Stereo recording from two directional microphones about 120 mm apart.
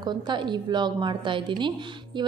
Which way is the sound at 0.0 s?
40° right (ahead or behind).